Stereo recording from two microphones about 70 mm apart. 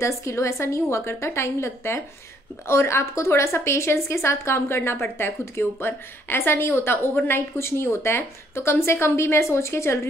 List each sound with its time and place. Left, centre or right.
0.0 s a woman's voice: left